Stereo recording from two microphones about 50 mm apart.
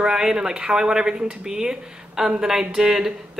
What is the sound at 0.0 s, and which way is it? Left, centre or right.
A woman's voice, centre.